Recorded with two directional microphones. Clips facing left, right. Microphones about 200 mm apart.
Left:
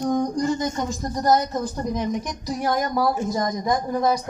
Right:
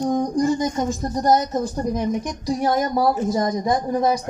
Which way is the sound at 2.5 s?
30° right (ahead or behind).